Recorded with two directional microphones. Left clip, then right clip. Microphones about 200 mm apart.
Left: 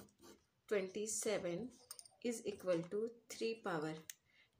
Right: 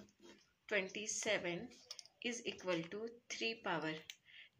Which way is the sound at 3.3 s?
50° left (ahead or behind).